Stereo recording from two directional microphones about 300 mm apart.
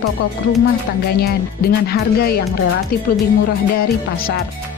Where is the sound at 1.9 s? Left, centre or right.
Left.